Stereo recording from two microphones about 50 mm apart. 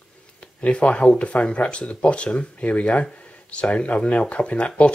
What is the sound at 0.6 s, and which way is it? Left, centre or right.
Speech, left.